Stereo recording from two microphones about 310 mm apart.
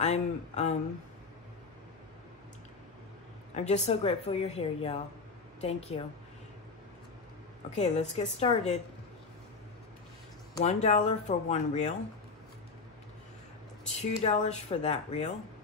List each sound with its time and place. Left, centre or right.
0.0 s a woman's voice: left
3.5 s a woman's voice: left
7.7 s a woman's voice: left
10.5 s a woman's voice: left
14.2 s a woman's voice: left